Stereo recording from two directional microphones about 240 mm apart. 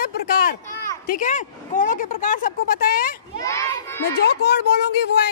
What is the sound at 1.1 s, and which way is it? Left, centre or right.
A woman's voice, left.